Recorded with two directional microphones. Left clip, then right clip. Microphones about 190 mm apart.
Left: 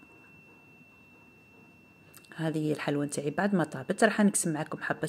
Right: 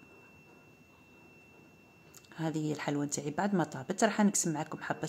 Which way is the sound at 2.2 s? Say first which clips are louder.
Left 4 dB; 15° left (ahead or behind).